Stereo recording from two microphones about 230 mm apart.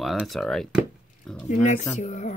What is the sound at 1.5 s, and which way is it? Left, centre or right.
Speech, left.